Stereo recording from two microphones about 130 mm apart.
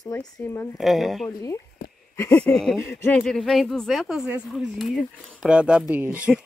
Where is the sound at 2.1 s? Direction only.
20° left (ahead or behind).